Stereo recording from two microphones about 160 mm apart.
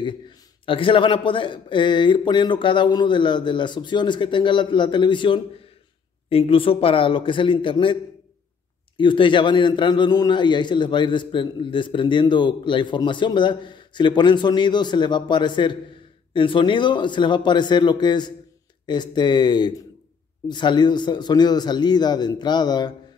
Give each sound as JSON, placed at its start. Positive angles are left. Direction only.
{"t": 0.7, "sound": "a man's voice", "side_deg": 35}